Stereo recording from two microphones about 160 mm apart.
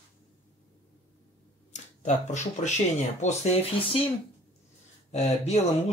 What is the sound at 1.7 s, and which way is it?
Speech, 45° left (ahead or behind).